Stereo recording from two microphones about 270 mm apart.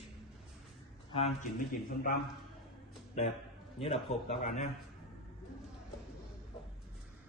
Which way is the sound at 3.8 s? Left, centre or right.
Left.